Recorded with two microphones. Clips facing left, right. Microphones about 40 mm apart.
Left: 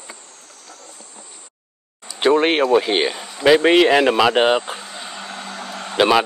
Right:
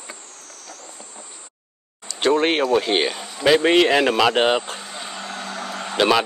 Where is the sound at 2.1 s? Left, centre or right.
Centre.